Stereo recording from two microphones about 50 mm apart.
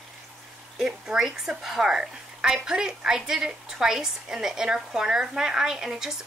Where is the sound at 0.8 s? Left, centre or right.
Centre.